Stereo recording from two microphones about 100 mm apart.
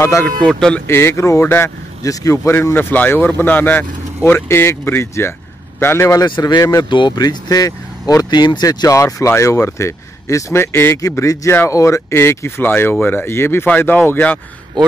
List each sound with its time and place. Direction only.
0.0 s speech: 30° left (ahead or behind)
0.4 s speech: 5° left (ahead or behind)
0.8 s speech: 25° left (ahead or behind)
6.2 s speech: 45° left (ahead or behind)
6.9 s speech: 50° left (ahead or behind); by 11.0 s 25° left (ahead or behind)
11.0 s speech: 35° left (ahead or behind); by 14.4 s 20° left (ahead or behind)